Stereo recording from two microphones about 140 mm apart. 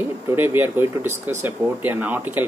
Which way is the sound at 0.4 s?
15° right (ahead or behind).